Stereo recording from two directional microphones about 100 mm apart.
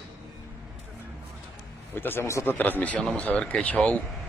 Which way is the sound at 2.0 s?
25° left (ahead or behind).